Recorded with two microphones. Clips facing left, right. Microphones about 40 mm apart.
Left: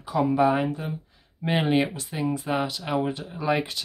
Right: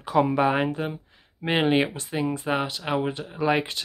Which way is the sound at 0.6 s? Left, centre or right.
Right.